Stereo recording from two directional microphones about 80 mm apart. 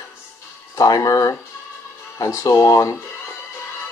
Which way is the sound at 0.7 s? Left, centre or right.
Left.